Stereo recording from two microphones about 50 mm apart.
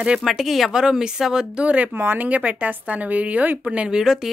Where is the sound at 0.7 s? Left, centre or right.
Centre.